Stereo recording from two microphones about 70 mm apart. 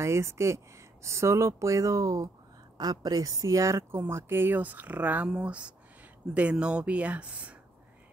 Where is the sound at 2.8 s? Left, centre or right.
Right.